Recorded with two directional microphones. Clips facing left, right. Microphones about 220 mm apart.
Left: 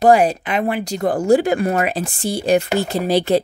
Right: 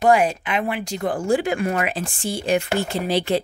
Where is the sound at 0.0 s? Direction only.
35° left (ahead or behind).